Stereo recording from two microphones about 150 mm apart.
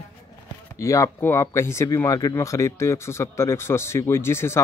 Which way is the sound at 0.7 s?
20° left (ahead or behind).